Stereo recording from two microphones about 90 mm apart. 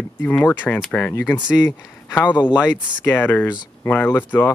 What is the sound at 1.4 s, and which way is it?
Speech, 50° left (ahead or behind).